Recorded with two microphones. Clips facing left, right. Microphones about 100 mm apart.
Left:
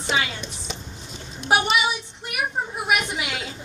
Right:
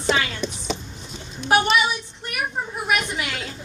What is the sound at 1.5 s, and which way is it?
A woman's voice, 15° left (ahead or behind).